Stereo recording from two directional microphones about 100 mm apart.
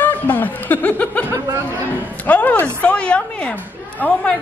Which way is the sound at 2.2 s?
15° left (ahead or behind).